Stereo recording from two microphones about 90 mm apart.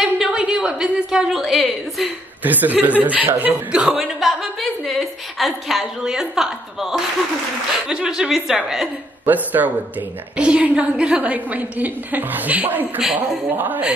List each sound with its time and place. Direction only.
0.0 s a woman's voice: 10° right (ahead or behind)
2.4 s speech: 20° right (ahead or behind)
3.8 s a woman's voice: 5° right (ahead or behind)
9.2 s a woman's voice: 20° right (ahead or behind)